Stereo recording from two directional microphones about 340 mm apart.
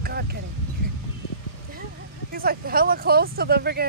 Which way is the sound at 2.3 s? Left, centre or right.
Right.